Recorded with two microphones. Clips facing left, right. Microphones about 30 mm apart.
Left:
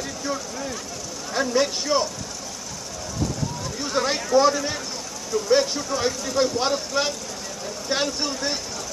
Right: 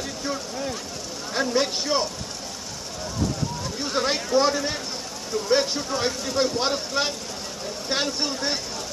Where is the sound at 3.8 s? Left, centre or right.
Centre.